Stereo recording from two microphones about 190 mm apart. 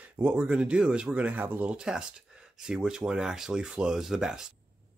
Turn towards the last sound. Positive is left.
turn(degrees=-5)  # may be behind; listen again after turning